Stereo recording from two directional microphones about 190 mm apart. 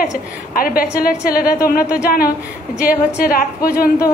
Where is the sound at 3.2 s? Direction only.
50° left (ahead or behind).